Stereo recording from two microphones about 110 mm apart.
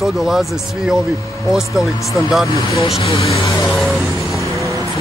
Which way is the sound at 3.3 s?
30° left (ahead or behind).